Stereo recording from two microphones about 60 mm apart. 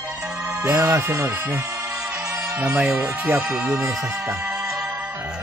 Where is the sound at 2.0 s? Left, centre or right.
Centre.